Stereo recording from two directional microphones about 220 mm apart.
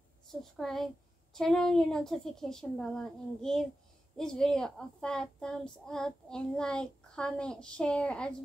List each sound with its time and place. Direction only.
0.3 s speech: centre (ahead or behind)